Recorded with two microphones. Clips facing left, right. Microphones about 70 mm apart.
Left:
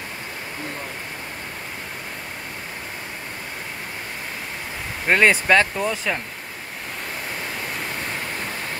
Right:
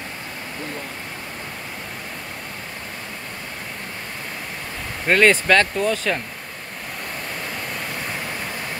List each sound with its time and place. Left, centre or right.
5.0 s speech: centre